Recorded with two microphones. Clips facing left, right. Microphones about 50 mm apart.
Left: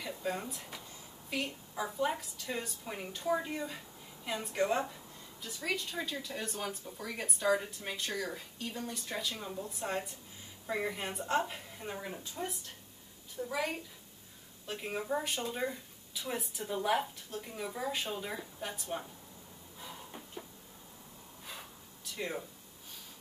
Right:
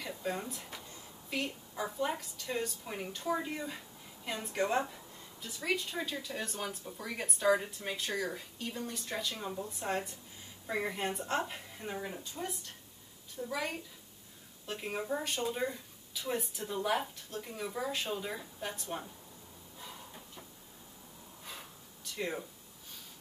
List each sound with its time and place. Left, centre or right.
0.0 s a sound: centre
1.3 s a woman's voice: centre
22.0 s speech: centre